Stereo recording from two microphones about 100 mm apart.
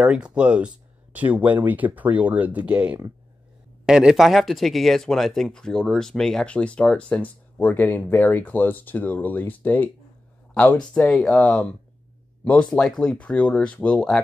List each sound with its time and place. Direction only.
0.0 s speech: 10° right (ahead or behind); by 14.2 s 10° left (ahead or behind)